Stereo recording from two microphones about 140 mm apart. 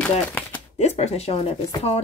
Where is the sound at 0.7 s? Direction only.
50° left (ahead or behind).